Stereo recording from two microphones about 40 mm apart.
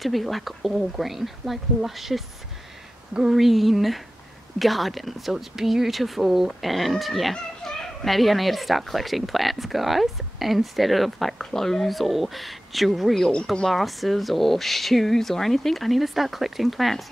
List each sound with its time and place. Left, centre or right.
0.0 s speech: centre
3.1 s speech: centre
3.3 s speech: centre